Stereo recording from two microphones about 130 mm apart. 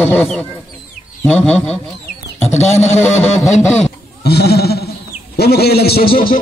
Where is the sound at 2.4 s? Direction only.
60° left (ahead or behind).